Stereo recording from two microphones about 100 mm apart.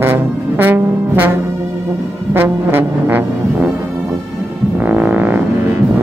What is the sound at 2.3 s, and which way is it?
Music, 20° right (ahead or behind).